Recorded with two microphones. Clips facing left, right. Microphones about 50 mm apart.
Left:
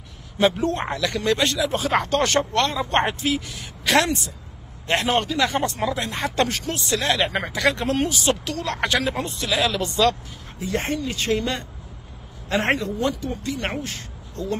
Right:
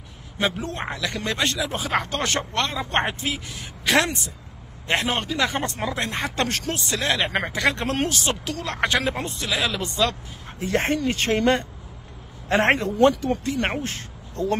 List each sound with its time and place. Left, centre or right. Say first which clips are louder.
0.4 s speech: left 6 dB; centre
1.8 s speech: left 5 dB; centre
3.2 s speech: left 4 dB; right
4.8 s speech: left 2 dB; centre
5.9 s speech: left 2 dB; right
7.0 s speech: left 1 dB; centre
7.2 s speech: left 1 dB; right
7.7 s speech: left 2 dB; right
8.5 s speech: left 2 dB; centre
9.0 s speech: left 1 dB; right
9.5 s speech: left 3 dB; centre
10.6 s speech: right 3 dB; right